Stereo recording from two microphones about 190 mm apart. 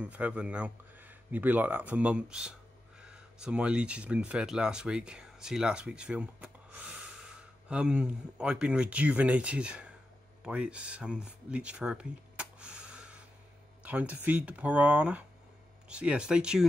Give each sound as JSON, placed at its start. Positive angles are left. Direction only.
{"t": 0.0, "sound": "speech", "side_deg": -5}